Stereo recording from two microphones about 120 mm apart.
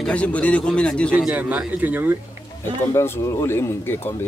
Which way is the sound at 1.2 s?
10° right (ahead or behind).